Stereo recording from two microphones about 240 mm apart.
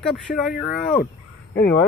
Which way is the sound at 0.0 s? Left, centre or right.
Centre.